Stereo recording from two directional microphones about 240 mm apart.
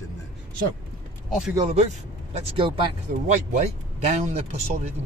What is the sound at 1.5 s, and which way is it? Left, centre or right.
Speech, right.